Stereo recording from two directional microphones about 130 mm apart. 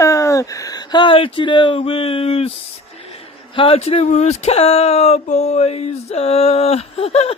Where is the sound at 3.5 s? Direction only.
45° left (ahead or behind).